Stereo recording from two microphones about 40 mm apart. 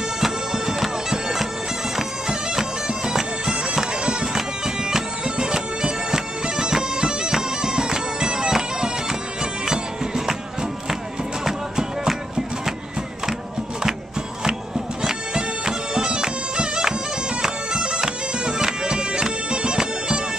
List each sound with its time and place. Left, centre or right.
0.2 s bagpipes: centre
11.4 s music: centre
15.0 s bagpipes: centre